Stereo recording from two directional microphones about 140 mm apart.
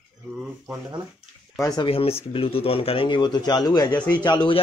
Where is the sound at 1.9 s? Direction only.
40° left (ahead or behind).